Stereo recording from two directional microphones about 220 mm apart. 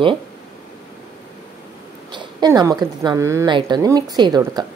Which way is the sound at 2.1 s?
20° right (ahead or behind).